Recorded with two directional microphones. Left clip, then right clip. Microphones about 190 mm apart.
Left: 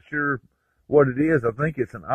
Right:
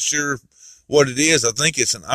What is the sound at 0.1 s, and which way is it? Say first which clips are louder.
Speech: right 3 dB; 20° right (ahead or behind).